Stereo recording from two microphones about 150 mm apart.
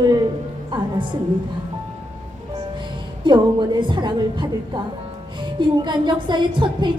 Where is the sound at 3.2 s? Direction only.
30° right (ahead or behind).